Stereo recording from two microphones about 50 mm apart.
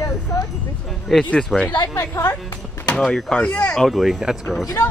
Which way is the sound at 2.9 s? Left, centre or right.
Centre.